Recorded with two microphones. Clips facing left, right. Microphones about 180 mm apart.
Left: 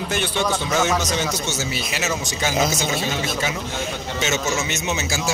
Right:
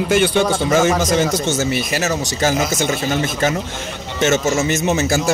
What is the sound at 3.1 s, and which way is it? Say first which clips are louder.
Speech: right 6 dB; 50° right (ahead or behind).